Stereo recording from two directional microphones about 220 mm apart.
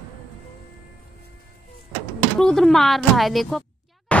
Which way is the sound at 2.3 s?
Centre (ahead or behind).